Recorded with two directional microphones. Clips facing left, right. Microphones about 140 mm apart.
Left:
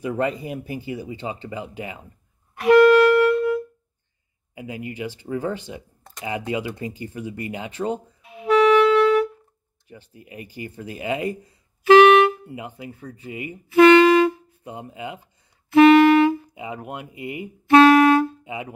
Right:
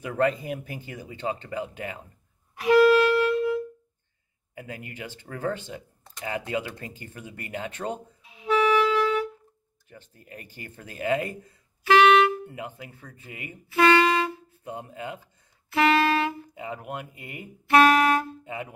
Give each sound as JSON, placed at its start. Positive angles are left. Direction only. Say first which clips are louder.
{"t": 0.0, "sound": "speech", "louder": "left 1 dB", "side_deg": 10}
{"t": 2.5, "sound": "wind instrument", "louder": "left 5 dB", "side_deg": 60}
{"t": 4.6, "sound": "speech", "louder": "left 7 dB", "side_deg": 10}
{"t": 8.2, "sound": "music", "louder": "left 6 dB", "side_deg": 60}
{"t": 9.8, "sound": "speech", "louder": "left 4 dB", "side_deg": 10}
{"t": 11.9, "sound": "speech", "louder": "left 6 dB", "side_deg": 20}
{"t": 13.7, "sound": "wind instrument", "louder": "left 8 dB", "side_deg": 25}
{"t": 14.6, "sound": "speech", "louder": "left 1 dB", "side_deg": 10}
{"t": 15.7, "sound": "music", "louder": "left 10 dB", "side_deg": 20}
{"t": 17.2, "sound": "speech", "louder": "left 10 dB", "side_deg": 5}
{"t": 17.6, "sound": "music", "louder": "left 6 dB", "side_deg": 25}
{"t": 18.4, "sound": "music", "louder": "left 3 dB", "side_deg": 10}